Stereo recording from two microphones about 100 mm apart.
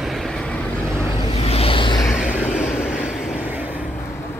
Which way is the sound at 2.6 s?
20° left (ahead or behind).